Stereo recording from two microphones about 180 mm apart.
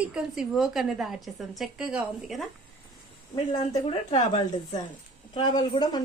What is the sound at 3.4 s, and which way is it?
A woman's voice, 30° left (ahead or behind).